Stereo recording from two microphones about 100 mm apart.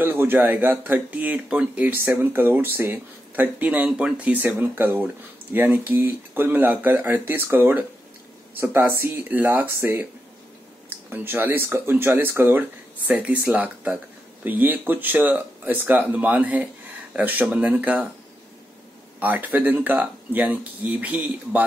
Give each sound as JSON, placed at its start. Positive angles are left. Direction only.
{"t": 0.0, "sound": "speech", "side_deg": -20}
{"t": 11.1, "sound": "speech", "side_deg": -20}
{"t": 19.1, "sound": "speech", "side_deg": -15}